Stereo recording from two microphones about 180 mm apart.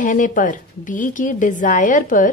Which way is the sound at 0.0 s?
45° left (ahead or behind).